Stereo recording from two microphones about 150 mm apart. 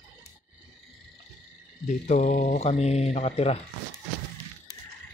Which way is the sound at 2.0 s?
50° left (ahead or behind).